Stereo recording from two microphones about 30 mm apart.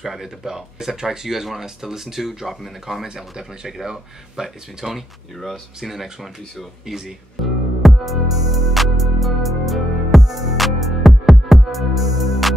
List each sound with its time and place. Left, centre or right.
0.0 s speech: centre
7.4 s music: centre